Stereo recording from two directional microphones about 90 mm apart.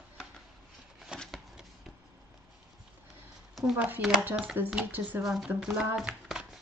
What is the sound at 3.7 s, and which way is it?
A woman's voice, 15° right (ahead or behind).